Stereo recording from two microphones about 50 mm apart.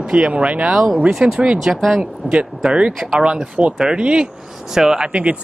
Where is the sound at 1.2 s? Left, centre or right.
Centre.